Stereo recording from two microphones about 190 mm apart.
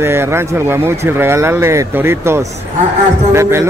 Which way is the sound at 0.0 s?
10° right (ahead or behind).